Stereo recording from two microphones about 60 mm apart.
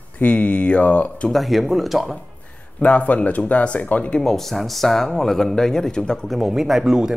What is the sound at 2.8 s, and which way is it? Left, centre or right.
Speech, left.